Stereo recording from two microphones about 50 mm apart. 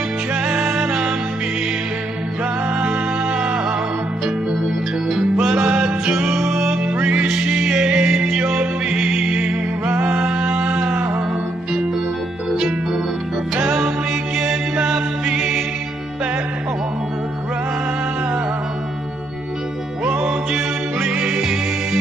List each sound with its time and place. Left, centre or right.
0.3 s music: right
2.8 s music: right
5.1 s music: centre
9.9 s a sound: right
12.5 s music: centre
20.1 s music: centre